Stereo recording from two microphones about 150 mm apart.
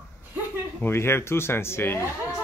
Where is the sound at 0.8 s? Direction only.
15° left (ahead or behind).